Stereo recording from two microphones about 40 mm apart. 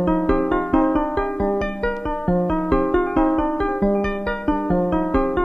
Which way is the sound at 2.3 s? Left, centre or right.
Centre.